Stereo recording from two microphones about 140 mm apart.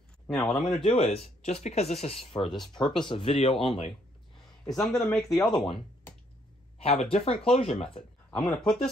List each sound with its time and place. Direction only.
0.3 s speech: centre (ahead or behind)
0.8 s speech: 45° left (ahead or behind)
4.5 s speech: centre (ahead or behind)
6.8 s speech: 45° left (ahead or behind)
8.3 s speech: 5° left (ahead or behind)